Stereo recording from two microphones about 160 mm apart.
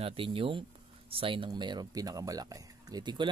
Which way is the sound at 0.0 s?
35° right (ahead or behind).